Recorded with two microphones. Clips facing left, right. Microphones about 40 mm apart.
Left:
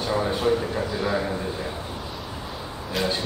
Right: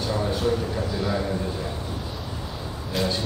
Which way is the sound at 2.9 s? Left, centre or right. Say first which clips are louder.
Even; centre.